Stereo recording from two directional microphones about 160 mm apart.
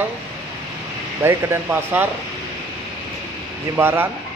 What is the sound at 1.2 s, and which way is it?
Speech, 15° right (ahead or behind).